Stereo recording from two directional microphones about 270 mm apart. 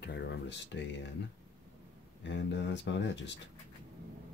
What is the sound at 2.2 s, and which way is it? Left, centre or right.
Speech, left.